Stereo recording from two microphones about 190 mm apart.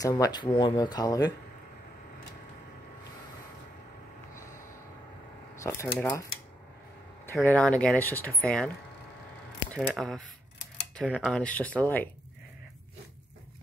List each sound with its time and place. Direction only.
0.0 s speech: 20° left (ahead or behind)
5.8 s speech: 10° left (ahead or behind)
7.3 s speech: 5° left (ahead or behind)
9.8 s speech: centre (ahead or behind)